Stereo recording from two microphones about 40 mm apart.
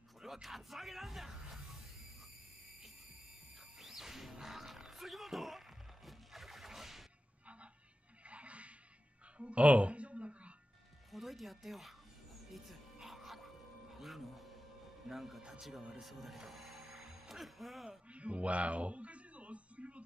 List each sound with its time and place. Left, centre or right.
0.2 s music: centre
3.8 s music: centre
6.0 s a sound: centre
8.3 s music: right
9.4 s a sound: right
11.1 s music: centre
15.0 s speech: centre
15.9 s music: centre
17.8 s a sound: right